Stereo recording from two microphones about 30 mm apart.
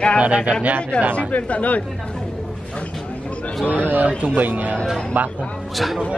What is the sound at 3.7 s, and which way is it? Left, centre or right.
Speech, right.